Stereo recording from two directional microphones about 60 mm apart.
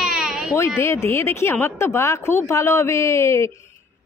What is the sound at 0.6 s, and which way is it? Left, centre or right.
A woman's voice, left.